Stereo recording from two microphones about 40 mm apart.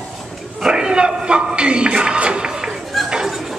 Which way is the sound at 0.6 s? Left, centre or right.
Centre.